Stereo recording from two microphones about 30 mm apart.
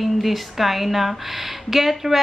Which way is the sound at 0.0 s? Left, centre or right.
Centre.